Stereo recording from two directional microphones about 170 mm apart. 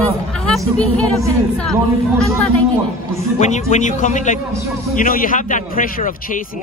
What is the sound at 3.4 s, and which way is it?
A man's voice, 45° left (ahead or behind).